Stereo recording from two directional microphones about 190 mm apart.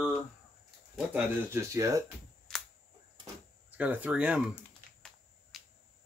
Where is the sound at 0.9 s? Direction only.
10° right (ahead or behind).